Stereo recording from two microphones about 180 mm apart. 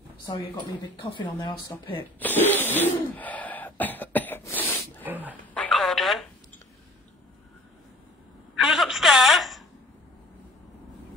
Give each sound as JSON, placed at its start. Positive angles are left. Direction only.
{"t": 0.9, "sound": "speech", "side_deg": 25}
{"t": 2.1, "sound": "sneeze", "side_deg": 10}
{"t": 5.0, "sound": "dog", "side_deg": -10}
{"t": 5.5, "sound": "telephone", "side_deg": 5}
{"t": 8.5, "sound": "a sound", "side_deg": 0}